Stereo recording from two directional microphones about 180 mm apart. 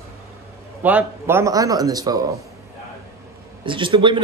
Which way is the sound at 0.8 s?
10° right (ahead or behind).